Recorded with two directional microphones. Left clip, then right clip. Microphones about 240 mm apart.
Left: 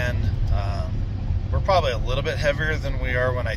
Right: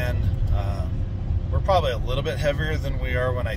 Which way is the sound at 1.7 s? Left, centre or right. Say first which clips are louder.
Left 1 dB; centre.